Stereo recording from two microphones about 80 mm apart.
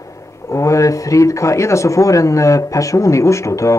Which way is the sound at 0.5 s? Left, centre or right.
Left.